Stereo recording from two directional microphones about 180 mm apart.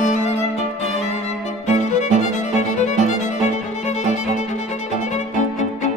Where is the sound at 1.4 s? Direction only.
40° left (ahead or behind).